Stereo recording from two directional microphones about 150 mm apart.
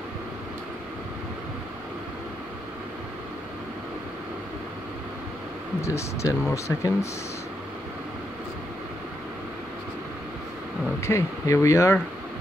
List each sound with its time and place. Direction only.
5.8 s speech: 20° left (ahead or behind)
11.0 s speech: 20° left (ahead or behind)